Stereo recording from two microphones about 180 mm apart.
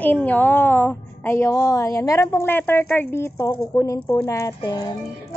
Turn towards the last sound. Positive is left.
turn(degrees=20)  # may be behind; listen again after turning